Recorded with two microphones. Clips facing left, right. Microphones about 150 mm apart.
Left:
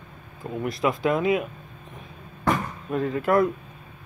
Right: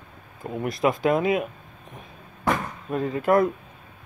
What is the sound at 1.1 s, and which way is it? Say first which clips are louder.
Speech: even; 40° right (ahead or behind).